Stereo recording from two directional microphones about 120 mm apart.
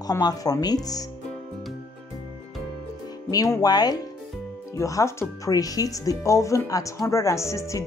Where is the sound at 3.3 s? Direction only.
30° left (ahead or behind).